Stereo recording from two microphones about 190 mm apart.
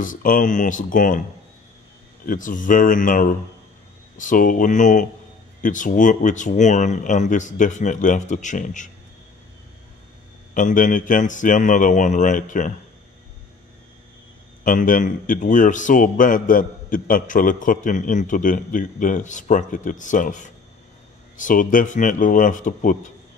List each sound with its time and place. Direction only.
0.0 s a man's voice: 45° left (ahead or behind)
2.2 s a man's voice: 45° left (ahead or behind)
10.5 s a man's voice: 45° left (ahead or behind)
14.6 s a man's voice: 45° left (ahead or behind)